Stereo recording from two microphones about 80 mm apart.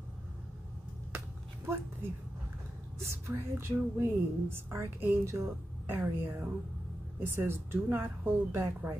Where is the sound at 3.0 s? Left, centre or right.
Right.